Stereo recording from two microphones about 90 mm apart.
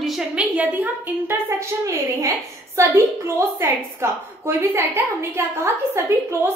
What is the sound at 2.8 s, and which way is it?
A woman's voice, 30° right (ahead or behind).